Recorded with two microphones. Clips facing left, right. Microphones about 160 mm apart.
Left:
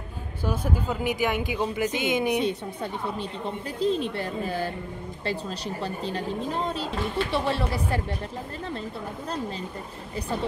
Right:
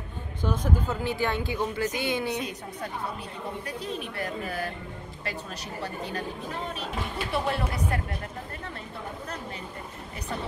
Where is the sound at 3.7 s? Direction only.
30° left (ahead or behind).